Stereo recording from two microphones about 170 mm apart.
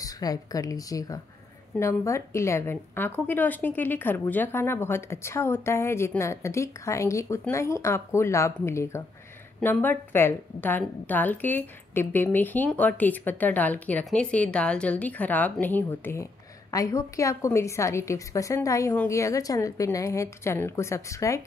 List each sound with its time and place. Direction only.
0.0 s a woman's voice: 20° left (ahead or behind)